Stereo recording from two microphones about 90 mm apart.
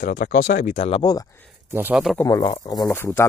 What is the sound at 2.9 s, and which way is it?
Speech, 25° left (ahead or behind).